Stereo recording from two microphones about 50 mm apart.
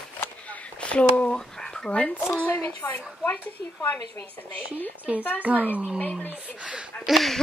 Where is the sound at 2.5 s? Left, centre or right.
Left.